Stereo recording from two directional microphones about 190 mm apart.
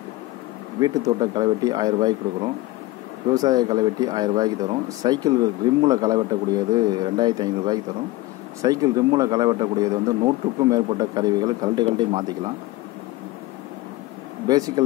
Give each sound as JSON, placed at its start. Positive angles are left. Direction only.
{"t": 0.7, "sound": "speech", "side_deg": -20}